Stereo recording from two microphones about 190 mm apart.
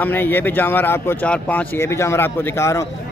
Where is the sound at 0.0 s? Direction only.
10° left (ahead or behind).